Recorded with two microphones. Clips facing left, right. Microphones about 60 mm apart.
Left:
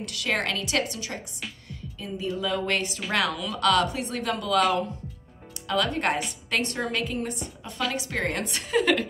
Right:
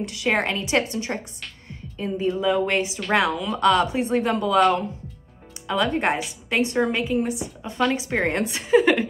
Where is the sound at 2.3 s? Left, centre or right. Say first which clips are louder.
Right 4 dB; centre.